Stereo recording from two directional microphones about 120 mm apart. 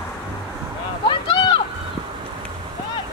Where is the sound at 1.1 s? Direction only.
40° left (ahead or behind).